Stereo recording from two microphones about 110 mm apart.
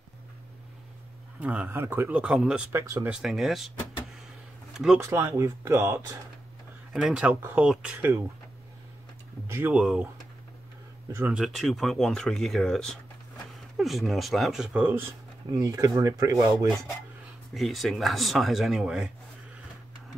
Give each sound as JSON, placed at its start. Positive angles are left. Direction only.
{"t": 1.4, "sound": "speech", "side_deg": -15}
{"t": 2.7, "sound": "speech", "side_deg": -25}
{"t": 3.1, "sound": "speech", "side_deg": -5}
{"t": 4.7, "sound": "speech", "side_deg": -5}
{"t": 5.1, "sound": "speech", "side_deg": -20}
{"t": 6.9, "sound": "speech", "side_deg": -5}
{"t": 9.7, "sound": "speech", "side_deg": -10}
{"t": 11.3, "sound": "speech", "side_deg": 0}
{"t": 15.5, "sound": "speech", "side_deg": -30}
{"t": 17.6, "sound": "speech", "side_deg": 0}